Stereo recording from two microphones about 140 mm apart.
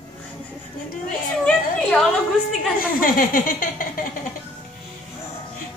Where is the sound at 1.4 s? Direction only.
Centre (ahead or behind).